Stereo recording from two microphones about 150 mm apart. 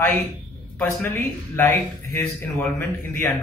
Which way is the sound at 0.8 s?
15° left (ahead or behind).